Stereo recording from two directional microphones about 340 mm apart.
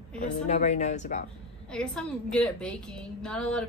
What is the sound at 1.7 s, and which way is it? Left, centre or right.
A woman's voice, centre.